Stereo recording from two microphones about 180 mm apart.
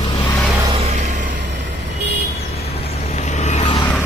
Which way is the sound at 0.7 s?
40° right (ahead or behind).